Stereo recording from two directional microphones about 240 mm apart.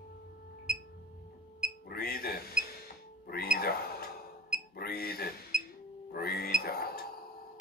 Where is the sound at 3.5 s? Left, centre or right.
Left.